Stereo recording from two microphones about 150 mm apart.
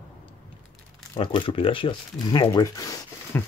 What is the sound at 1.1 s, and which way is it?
Speech, 30° left (ahead or behind).